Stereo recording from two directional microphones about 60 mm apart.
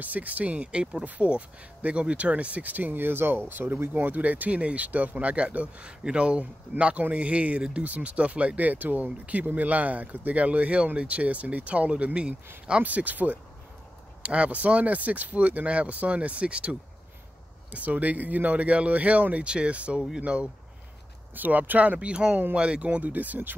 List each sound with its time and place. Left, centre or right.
0.0 s speech: right
21.4 s speech: right